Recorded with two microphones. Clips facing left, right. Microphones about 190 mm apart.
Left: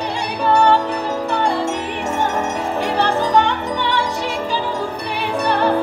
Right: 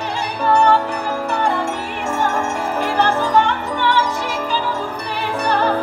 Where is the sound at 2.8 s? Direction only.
20° left (ahead or behind).